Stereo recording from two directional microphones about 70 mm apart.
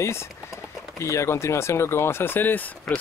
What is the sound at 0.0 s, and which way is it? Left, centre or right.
Speech, left.